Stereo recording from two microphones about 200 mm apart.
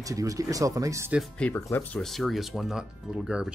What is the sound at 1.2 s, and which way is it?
Speech, 10° left (ahead or behind).